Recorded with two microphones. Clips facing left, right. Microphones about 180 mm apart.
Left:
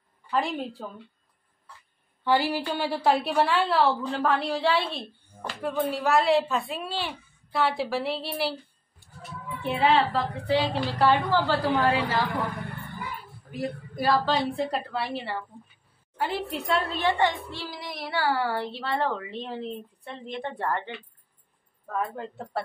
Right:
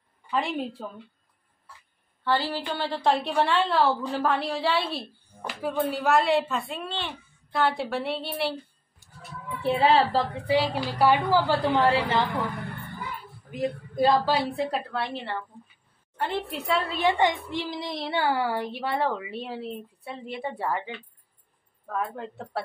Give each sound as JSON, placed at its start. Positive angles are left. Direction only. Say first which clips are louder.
{"t": 0.3, "sound": "speech", "louder": "even", "side_deg": 0}
{"t": 2.2, "sound": "speech", "louder": "left 2 dB", "side_deg": 10}
{"t": 9.6, "sound": "a woman's voice", "louder": "right 2 dB", "side_deg": -35}
{"t": 10.4, "sound": "a child's voice", "louder": "left 2 dB", "side_deg": -10}
{"t": 11.6, "sound": "speech", "louder": "right 1 dB", "side_deg": -25}
{"t": 13.5, "sound": "a woman's voice", "louder": "right 3 dB", "side_deg": -20}
{"t": 14.2, "sound": "speech", "louder": "even", "side_deg": -5}
{"t": 17.0, "sound": "a child's voice", "louder": "right 1 dB", "side_deg": -15}